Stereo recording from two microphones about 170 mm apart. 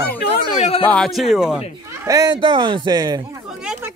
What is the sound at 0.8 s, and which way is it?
Speech, 5° left (ahead or behind).